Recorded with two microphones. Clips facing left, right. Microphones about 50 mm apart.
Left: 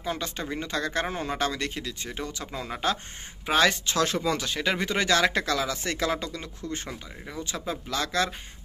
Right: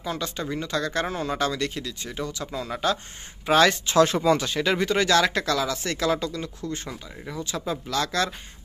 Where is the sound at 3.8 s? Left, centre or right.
Centre.